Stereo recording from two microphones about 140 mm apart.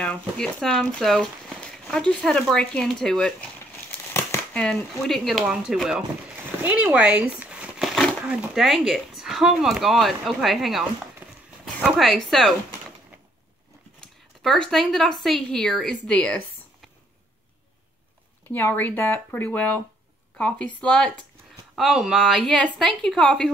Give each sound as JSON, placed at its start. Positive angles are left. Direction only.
{"t": 0.0, "sound": "speech", "side_deg": 5}
{"t": 4.1, "sound": "a sound", "side_deg": 20}
{"t": 4.6, "sound": "speech", "side_deg": 5}
{"t": 7.9, "sound": "a sound", "side_deg": 5}
{"t": 8.3, "sound": "speech", "side_deg": -5}
{"t": 11.2, "sound": "dog", "side_deg": -15}
{"t": 11.8, "sound": "speech", "side_deg": 0}
{"t": 14.0, "sound": "speech", "side_deg": 5}
{"t": 18.5, "sound": "speech", "side_deg": 10}